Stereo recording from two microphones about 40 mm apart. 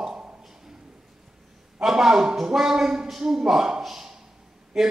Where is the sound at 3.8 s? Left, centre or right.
Centre.